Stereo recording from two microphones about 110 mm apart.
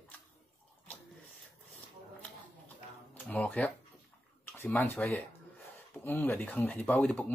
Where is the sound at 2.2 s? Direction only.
15° left (ahead or behind).